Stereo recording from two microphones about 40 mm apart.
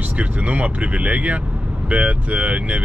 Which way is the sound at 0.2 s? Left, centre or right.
Right.